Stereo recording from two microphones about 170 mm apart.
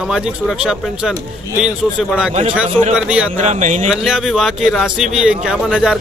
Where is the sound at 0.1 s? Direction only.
5° right (ahead or behind).